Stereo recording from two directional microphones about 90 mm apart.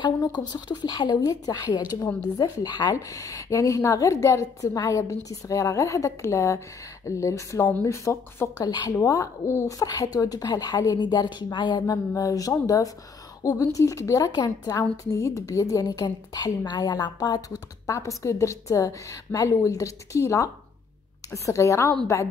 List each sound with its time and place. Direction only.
0.0 s a woman's voice: 50° left (ahead or behind); by 8.6 s 35° left (ahead or behind)
8.6 s a woman's voice: 50° left (ahead or behind)
8.9 s a woman's voice: 35° left (ahead or behind); by 11.8 s 55° left (ahead or behind)
12.1 s a woman's voice: 40° left (ahead or behind)
14.3 s a woman's voice: 50° left (ahead or behind)